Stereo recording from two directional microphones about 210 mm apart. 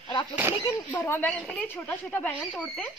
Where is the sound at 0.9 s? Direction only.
10° left (ahead or behind).